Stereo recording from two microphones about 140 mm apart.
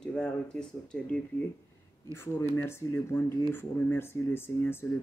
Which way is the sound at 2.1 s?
20° left (ahead or behind).